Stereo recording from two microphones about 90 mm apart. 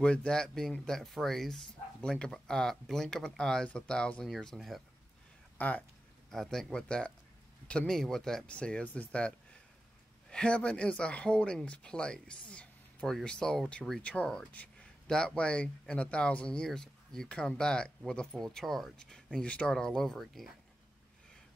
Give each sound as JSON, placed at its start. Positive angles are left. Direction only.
{"t": 0.0, "sound": "speech", "side_deg": 10}
{"t": 5.6, "sound": "speech", "side_deg": 15}
{"t": 6.3, "sound": "speech", "side_deg": 5}